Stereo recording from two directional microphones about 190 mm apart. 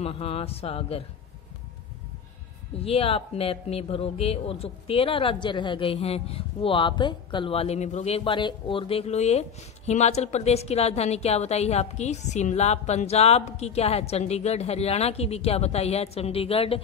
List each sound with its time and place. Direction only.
0.0 s speech: 30° left (ahead or behind)
2.8 s speech: 30° left (ahead or behind)